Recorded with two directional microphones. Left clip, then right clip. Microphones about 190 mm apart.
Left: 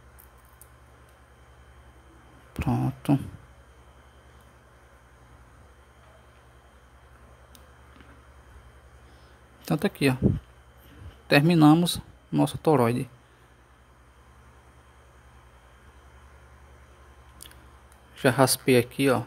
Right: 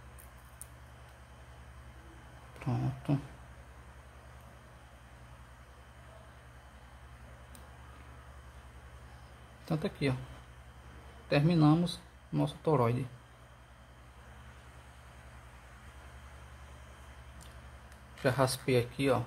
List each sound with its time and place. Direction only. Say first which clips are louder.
2.6 s speech: left 9 dB; 40° left (ahead or behind)
9.7 s speech: left 9 dB; 45° left (ahead or behind)
11.2 s speech: left 9 dB; 45° left (ahead or behind)
18.2 s speech: left 9 dB; 50° left (ahead or behind)